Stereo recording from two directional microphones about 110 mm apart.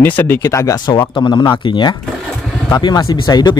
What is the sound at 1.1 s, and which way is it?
Speech, 45° left (ahead or behind).